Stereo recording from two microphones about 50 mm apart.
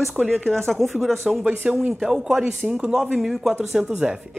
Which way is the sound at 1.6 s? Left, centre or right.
Centre.